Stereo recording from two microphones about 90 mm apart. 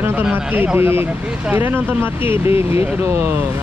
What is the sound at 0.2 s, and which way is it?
Speech, 20° right (ahead or behind).